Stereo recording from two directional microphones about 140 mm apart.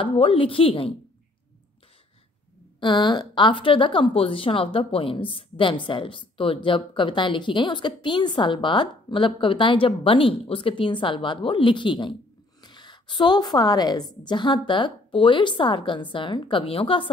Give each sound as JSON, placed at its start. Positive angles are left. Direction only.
{"t": 0.0, "sound": "a woman's voice", "side_deg": 40}
{"t": 2.8, "sound": "a woman's voice", "side_deg": 35}